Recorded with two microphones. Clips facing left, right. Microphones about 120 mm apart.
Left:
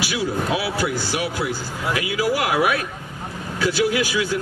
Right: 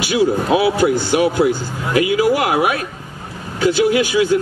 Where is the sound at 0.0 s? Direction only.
25° right (ahead or behind).